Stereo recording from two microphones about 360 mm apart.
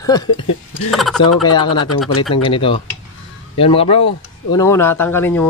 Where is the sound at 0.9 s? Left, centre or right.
Centre.